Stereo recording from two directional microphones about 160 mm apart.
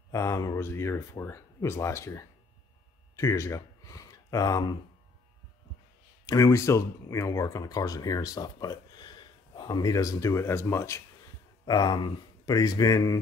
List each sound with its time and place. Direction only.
0.1 s speech: 20° left (ahead or behind)
6.2 s speech: 20° left (ahead or behind)
11.6 s speech: 25° left (ahead or behind)